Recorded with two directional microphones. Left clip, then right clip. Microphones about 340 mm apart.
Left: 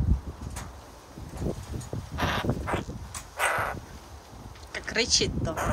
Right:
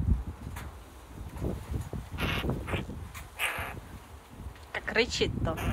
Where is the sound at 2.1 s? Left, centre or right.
Centre.